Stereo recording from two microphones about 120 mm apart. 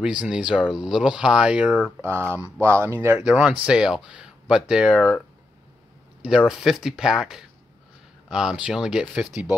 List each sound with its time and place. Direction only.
0.0 s speech: 10° right (ahead or behind)
2.0 s speech: 20° right (ahead or behind)
3.2 s speech: 10° right (ahead or behind)
6.2 s speech: 5° right (ahead or behind)